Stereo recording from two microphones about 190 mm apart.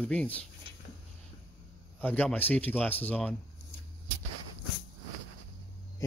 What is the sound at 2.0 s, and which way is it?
Speech, 10° left (ahead or behind).